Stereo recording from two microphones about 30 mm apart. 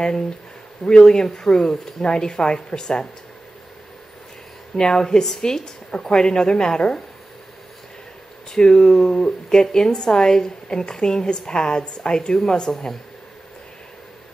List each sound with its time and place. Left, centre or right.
0.8 s speech: left
4.7 s speech: left
8.5 s speech: left